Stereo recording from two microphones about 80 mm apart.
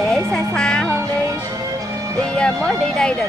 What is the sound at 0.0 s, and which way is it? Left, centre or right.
Music, centre.